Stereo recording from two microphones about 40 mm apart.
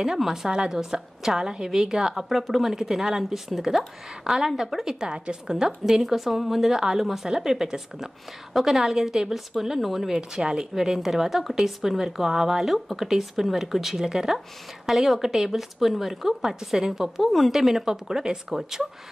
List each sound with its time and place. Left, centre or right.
0.0 s speech: centre
2.2 s speech: centre
5.0 s a woman's voice: right
6.0 s speech: centre
10.1 s a woman's voice: centre
14.0 s speech: centre
16.5 s speech: centre
16.9 s speech: centre